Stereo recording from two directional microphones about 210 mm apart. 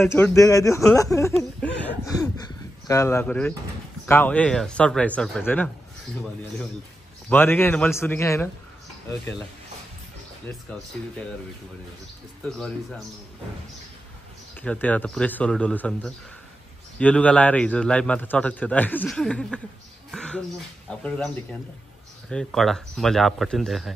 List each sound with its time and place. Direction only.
0.0 s speech: 10° left (ahead or behind)
0.9 s a sound: 15° left (ahead or behind)
4.0 s speech: 10° left (ahead or behind)
7.2 s speech: 10° left (ahead or behind)
12.4 s a man's voice: 5° left (ahead or behind)
14.5 s a man's voice: 5° left (ahead or behind)
20.1 s a sound: 5° left (ahead or behind)
20.9 s a man's voice: 5° left (ahead or behind)
22.3 s a man's voice: centre (ahead or behind)